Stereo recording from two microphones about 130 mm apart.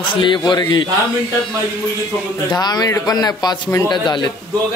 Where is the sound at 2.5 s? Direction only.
30° left (ahead or behind).